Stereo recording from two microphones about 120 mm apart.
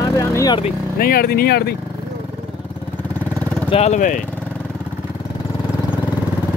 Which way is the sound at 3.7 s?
70° left (ahead or behind).